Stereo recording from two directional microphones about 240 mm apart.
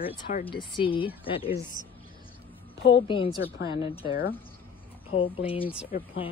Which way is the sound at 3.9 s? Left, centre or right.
Left.